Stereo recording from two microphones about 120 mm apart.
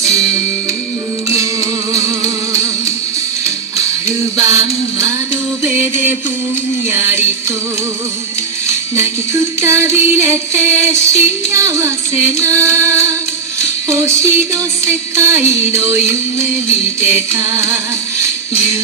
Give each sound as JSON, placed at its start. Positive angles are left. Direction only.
{"t": 1.4, "sound": "music", "side_deg": -25}
{"t": 8.6, "sound": "music", "side_deg": -25}
{"t": 17.1, "sound": "music", "side_deg": -25}